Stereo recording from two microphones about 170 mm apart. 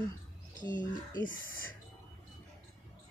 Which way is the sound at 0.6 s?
50° left (ahead or behind).